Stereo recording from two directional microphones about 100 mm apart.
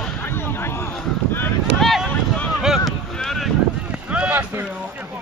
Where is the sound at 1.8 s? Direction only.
Centre (ahead or behind).